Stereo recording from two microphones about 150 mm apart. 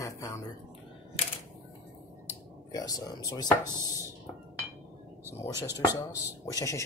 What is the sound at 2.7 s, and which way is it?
Speech, 25° left (ahead or behind).